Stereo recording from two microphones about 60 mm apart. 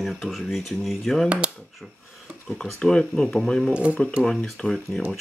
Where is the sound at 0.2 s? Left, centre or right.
Centre.